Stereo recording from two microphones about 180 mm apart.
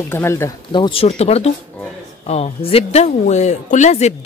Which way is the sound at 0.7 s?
25° left (ahead or behind).